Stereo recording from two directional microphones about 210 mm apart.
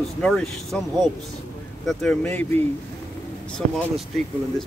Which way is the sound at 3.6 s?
35° right (ahead or behind).